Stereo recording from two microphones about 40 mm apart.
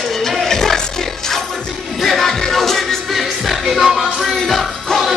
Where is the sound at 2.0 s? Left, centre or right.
Centre.